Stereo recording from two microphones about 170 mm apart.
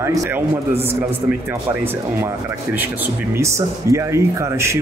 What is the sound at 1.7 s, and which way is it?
Speech, 15° right (ahead or behind).